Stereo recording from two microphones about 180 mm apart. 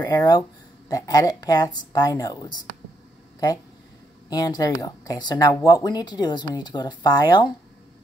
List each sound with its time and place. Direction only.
0.0 s speech: 20° left (ahead or behind)
4.3 s speech: 20° left (ahead or behind)